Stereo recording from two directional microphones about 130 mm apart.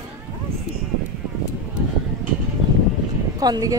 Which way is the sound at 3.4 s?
30° right (ahead or behind).